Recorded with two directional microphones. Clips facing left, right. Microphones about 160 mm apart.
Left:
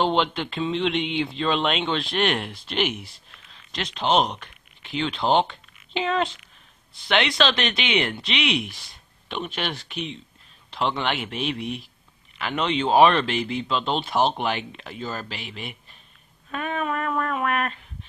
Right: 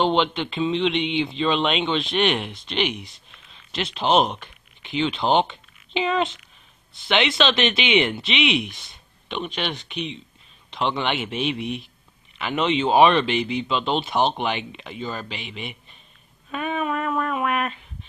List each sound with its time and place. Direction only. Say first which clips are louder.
0.0 s speech: right 2 dB; centre (ahead or behind)
3.7 s speech: right 2 dB; 5° right (ahead or behind)
16.4 s a sound: right 2 dB; 5° right (ahead or behind)